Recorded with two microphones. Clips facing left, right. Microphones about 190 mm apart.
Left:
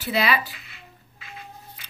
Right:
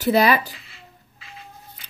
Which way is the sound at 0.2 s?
40° right (ahead or behind).